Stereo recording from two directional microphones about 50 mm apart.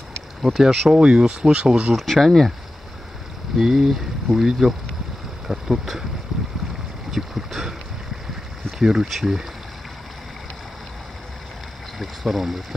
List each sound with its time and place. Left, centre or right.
0.4 s speech: centre
0.7 s speech: centre
2.0 s speech: centre
3.5 s speech: centre
6.3 s boat: centre
7.1 s speech: centre
8.7 s speech: centre
12.0 s speech: centre